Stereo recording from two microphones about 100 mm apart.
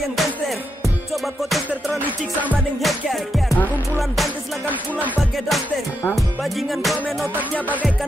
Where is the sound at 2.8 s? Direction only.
Centre (ahead or behind).